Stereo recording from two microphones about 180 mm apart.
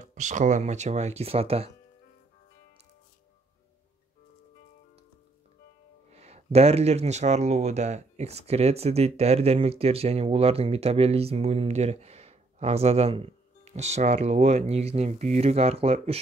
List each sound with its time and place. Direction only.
0.0 s speech: 45° right (ahead or behind)
6.1 s speech: 35° right (ahead or behind)